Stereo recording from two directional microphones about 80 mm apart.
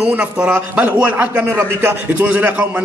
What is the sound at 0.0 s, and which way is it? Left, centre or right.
A man's voice, centre.